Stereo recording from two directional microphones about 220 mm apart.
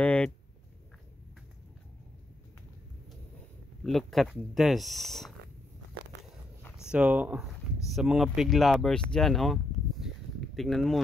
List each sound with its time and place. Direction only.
0.0 s a sound: 5° left (ahead or behind)
3.8 s speech: centre (ahead or behind)
6.1 s walk: 55° right (ahead or behind)
6.8 s speech: 5° right (ahead or behind)